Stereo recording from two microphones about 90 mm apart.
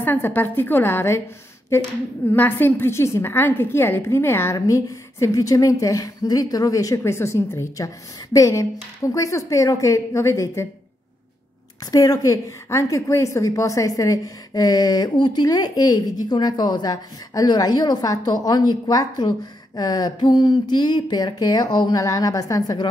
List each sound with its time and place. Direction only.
0.0 s a woman's voice: 20° left (ahead or behind)
11.9 s a woman's voice: 40° left (ahead or behind)
22.0 s a woman's voice: 40° left (ahead or behind)